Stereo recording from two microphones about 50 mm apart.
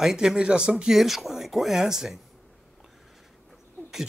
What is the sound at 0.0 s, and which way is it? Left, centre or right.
Speech, centre.